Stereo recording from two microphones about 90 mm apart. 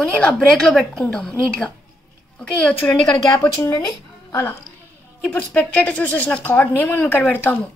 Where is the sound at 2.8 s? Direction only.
15° left (ahead or behind).